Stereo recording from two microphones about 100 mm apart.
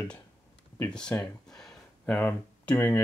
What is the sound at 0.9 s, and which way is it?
Speech, 10° left (ahead or behind).